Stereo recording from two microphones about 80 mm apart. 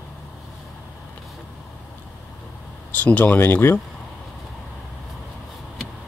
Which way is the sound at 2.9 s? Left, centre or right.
Centre.